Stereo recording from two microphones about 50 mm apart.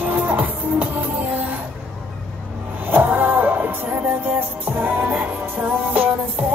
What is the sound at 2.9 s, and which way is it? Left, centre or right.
Music, right.